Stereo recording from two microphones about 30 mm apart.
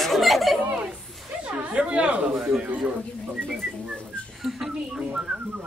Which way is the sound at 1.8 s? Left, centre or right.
Right.